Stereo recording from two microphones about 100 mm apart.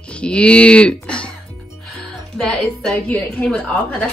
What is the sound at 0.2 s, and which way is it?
Speech, 10° left (ahead or behind).